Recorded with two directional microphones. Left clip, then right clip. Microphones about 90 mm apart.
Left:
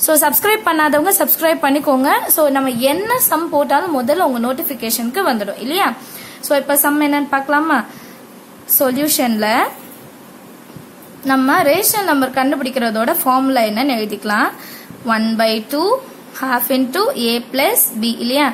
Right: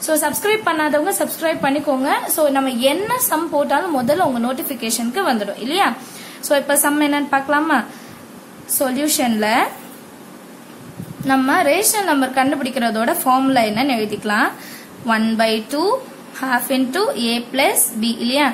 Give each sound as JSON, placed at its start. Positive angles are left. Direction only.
{"t": 0.0, "sound": "a woman's voice", "side_deg": 65}
{"t": 2.0, "sound": "a woman's voice", "side_deg": 55}
{"t": 8.7, "sound": "a woman's voice", "side_deg": 40}
{"t": 11.2, "sound": "a woman's voice", "side_deg": 35}